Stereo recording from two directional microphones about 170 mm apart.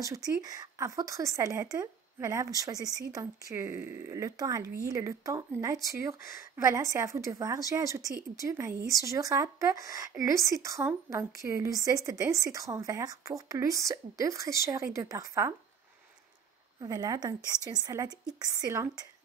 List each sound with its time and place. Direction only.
0.0 s speech: 20° right (ahead or behind)
16.8 s speech: 20° right (ahead or behind)